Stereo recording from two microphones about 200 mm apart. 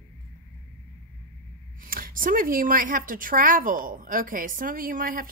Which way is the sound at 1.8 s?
45° right (ahead or behind).